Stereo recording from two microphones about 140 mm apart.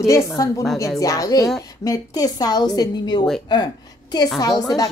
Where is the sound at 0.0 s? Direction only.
20° left (ahead or behind).